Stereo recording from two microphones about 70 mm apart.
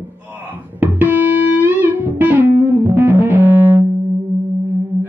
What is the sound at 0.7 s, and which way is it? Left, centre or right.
Music, right.